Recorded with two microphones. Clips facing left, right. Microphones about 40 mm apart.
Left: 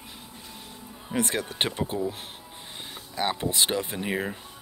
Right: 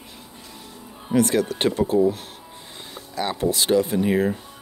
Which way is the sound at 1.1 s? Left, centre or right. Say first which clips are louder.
Right 9 dB; left.